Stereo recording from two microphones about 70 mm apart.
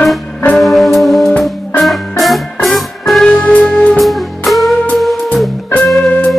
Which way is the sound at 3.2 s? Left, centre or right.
Centre.